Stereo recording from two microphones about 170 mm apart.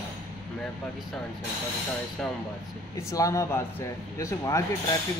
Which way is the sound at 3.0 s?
20° left (ahead or behind).